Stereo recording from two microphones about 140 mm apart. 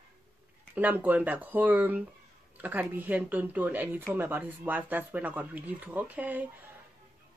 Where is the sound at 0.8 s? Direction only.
10° right (ahead or behind).